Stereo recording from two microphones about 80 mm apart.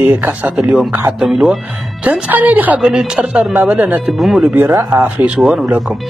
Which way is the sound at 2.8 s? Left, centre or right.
Centre.